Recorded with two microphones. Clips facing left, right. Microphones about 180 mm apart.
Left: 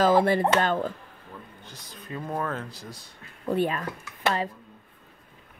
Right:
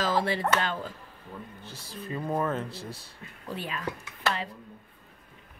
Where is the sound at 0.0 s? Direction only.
55° left (ahead or behind).